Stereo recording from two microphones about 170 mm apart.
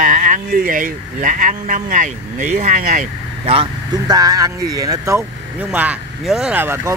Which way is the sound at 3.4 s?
25° right (ahead or behind).